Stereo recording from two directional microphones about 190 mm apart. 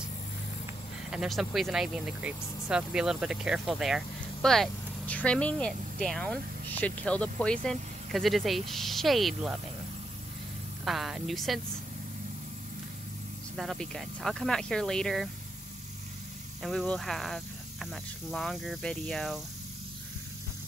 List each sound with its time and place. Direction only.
1.1 s speech: centre (ahead or behind)
10.9 s speech: centre (ahead or behind)
13.6 s speech: centre (ahead or behind)
16.6 s speech: centre (ahead or behind)